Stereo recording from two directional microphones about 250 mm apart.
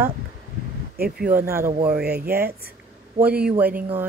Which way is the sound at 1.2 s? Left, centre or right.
Centre.